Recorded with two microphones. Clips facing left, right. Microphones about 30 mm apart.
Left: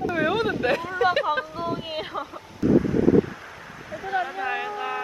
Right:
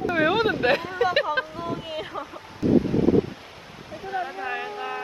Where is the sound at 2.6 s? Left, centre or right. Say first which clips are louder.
Left 1 dB; right.